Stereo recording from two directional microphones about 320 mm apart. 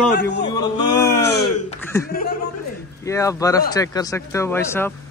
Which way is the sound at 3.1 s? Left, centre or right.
Centre.